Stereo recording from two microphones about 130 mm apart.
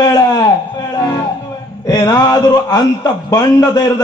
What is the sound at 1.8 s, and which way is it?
A man's voice, 30° left (ahead or behind).